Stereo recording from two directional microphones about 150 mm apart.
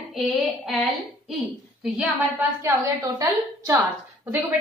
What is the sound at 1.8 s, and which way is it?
A woman's voice, 5° right (ahead or behind).